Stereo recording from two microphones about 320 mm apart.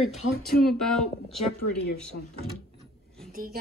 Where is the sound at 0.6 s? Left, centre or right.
Centre.